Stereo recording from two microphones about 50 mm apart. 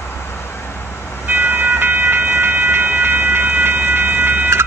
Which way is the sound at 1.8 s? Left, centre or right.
Right.